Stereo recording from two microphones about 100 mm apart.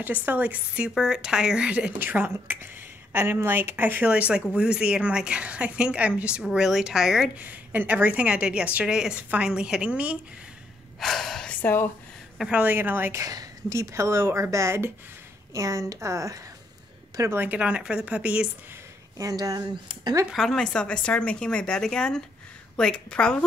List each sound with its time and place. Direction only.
0.0 s a woman's voice: 15° right (ahead or behind)
7.3 s a woman's voice: 15° right (ahead or behind)
11.0 s speech: 5° left (ahead or behind)
11.6 s speech: 20° left (ahead or behind)
12.4 s a woman's voice: 10° right (ahead or behind)
13.1 s a woman's voice: 35° right (ahead or behind); by 18.5 s 10° right (ahead or behind)
19.1 s speech: 35° right (ahead or behind)
20.3 s speech: 5° left (ahead or behind)